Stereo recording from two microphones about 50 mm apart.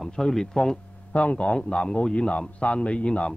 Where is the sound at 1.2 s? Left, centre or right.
Left.